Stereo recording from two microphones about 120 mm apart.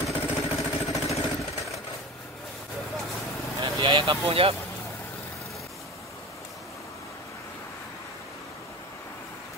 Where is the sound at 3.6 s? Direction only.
50° right (ahead or behind).